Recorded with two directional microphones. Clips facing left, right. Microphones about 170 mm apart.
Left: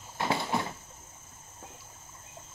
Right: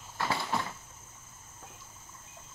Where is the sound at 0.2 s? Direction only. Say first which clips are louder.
Left 3 dB; 25° left (ahead or behind).